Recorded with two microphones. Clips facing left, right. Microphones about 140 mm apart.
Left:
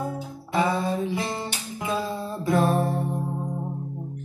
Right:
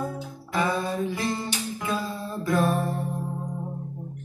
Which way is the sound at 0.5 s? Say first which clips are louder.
Left 2 dB; 30° left (ahead or behind).